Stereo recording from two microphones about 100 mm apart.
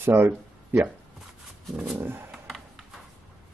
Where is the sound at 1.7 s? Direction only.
10° right (ahead or behind).